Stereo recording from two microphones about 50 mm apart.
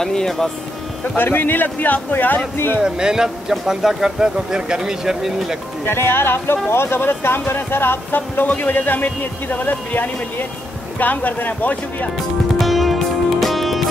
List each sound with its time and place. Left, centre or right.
0.0 s speech: centre
1.1 s a man's voice: left
2.8 s speech: centre
5.9 s a man's voice: left
12.5 s music: centre